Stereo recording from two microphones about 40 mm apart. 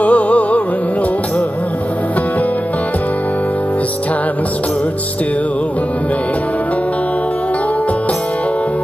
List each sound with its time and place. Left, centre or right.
0.0 s music: left